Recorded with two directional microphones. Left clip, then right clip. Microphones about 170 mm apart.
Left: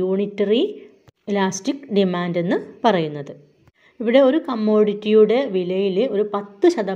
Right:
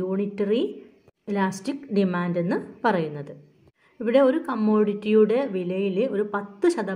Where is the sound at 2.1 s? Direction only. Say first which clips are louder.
Left 4 dB; 20° left (ahead or behind).